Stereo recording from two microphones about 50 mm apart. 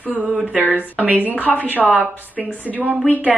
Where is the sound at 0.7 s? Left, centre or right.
Right.